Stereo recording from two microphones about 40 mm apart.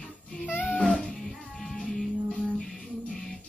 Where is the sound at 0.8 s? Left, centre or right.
Centre.